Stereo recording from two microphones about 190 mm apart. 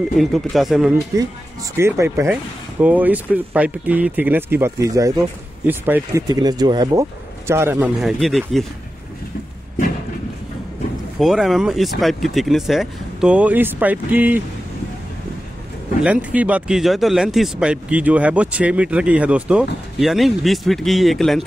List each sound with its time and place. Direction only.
0.2 s speech: centre (ahead or behind)
1.8 s speech: 15° right (ahead or behind)
8.0 s speech: centre (ahead or behind)
11.1 s speech: centre (ahead or behind)
16.0 s speech: 5° right (ahead or behind)